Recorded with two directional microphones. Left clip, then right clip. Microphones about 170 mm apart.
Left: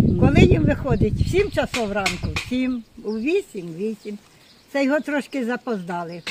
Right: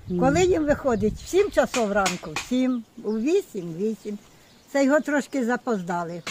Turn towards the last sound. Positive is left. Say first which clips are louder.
# even
turn(degrees=0)  # may be behind; listen again after turning